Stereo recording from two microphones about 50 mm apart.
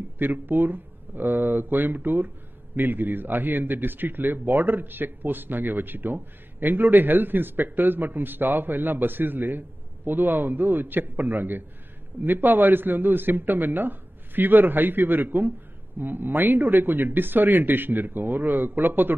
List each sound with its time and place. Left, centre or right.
0.2 s speech: right